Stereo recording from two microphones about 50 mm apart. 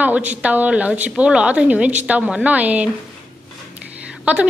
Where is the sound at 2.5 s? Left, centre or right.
Right.